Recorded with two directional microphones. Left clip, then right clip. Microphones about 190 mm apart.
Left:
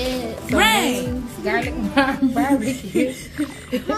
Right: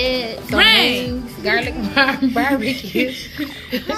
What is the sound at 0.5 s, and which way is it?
Speech, 45° left (ahead or behind).